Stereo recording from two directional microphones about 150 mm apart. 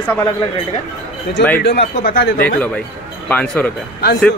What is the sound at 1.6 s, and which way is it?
Speech, 85° left.